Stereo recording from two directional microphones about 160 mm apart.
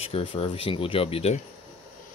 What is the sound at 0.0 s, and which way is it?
Speech, 35° left (ahead or behind).